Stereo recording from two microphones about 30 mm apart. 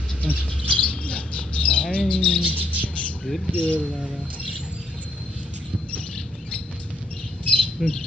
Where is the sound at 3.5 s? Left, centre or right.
Left.